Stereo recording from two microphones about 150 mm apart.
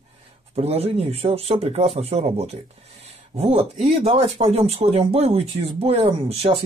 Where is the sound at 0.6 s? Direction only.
40° right (ahead or behind).